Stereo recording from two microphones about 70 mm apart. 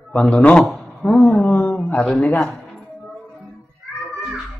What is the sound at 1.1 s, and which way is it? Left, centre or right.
A woman's voice, centre.